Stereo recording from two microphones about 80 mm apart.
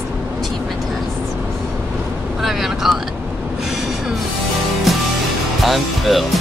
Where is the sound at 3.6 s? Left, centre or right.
Centre.